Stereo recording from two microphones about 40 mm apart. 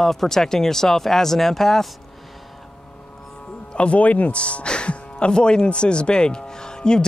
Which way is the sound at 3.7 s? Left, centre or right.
Left.